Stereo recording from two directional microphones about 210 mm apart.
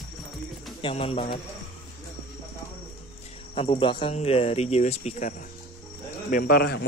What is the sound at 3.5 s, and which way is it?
Speech, 25° left (ahead or behind).